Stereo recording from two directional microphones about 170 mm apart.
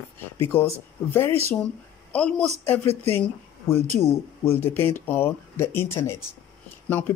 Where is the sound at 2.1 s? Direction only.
5° left (ahead or behind).